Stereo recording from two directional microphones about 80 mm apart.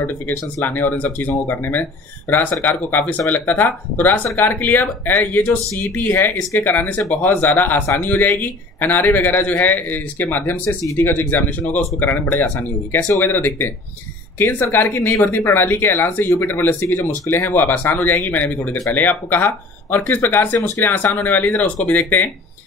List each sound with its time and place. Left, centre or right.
0.7 s speech: left